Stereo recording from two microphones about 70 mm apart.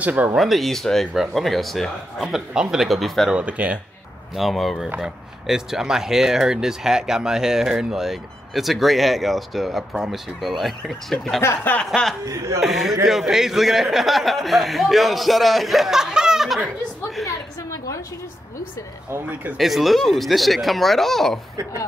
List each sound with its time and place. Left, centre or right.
0.0 s speech: right
0.4 s a man's voice: centre
3.3 s speech: centre
4.4 s a man's voice: centre
12.3 s speech: right
12.6 s a man's voice: centre
19.5 s a man's voice: centre